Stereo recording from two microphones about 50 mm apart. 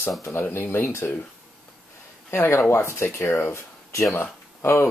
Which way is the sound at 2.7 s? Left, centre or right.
Left.